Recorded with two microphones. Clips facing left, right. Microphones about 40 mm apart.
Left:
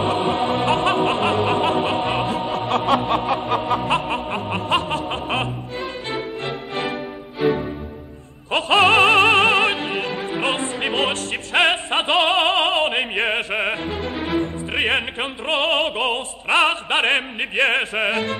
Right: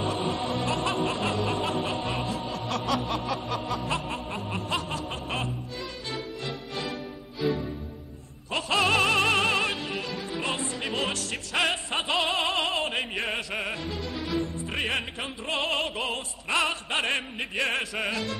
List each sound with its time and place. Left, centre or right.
0.3 s music: left
8.5 s opera: left